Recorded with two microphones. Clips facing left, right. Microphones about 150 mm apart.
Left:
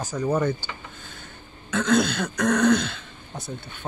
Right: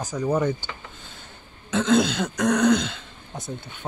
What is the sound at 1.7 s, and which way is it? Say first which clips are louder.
Throat clearing: right 1 dB; 20° right (ahead or behind).